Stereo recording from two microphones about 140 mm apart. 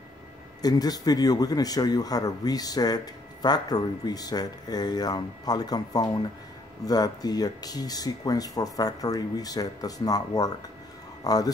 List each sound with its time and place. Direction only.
0.6 s speech: 25° left (ahead or behind)